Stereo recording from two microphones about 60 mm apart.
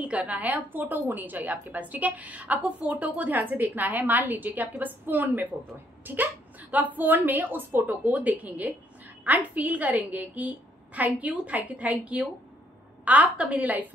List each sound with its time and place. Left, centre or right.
0.0 s a woman's voice: right